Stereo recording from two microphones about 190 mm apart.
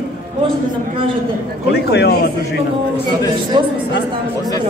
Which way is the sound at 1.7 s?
60° left (ahead or behind).